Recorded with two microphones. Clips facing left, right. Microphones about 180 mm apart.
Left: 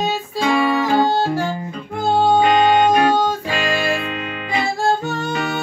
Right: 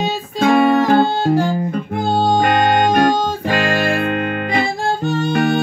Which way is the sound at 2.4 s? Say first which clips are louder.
Left 1 dB; 55° right (ahead or behind).